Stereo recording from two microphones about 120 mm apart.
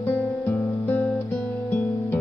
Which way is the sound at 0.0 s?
20° left (ahead or behind).